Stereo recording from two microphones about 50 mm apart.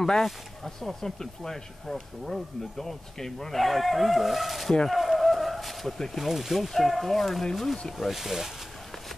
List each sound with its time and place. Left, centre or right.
0.0 s speech: centre
4.8 s a sound: centre
6.2 s speech: centre